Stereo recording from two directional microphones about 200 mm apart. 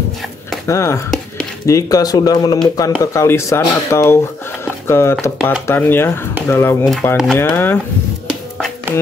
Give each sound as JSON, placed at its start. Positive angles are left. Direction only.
{"t": 0.7, "sound": "speech", "side_deg": 15}
{"t": 6.9, "sound": "speech", "side_deg": 5}